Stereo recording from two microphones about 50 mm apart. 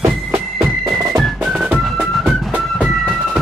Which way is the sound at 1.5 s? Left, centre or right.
Right.